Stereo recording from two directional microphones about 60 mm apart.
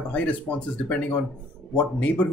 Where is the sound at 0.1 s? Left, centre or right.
Left.